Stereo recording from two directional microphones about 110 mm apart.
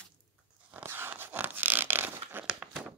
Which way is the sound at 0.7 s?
15° right (ahead or behind).